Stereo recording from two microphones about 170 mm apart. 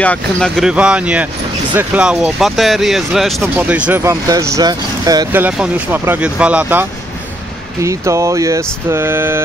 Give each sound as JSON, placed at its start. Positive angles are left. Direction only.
{"t": 0.0, "sound": "speech", "side_deg": 5}
{"t": 5.4, "sound": "speech", "side_deg": -10}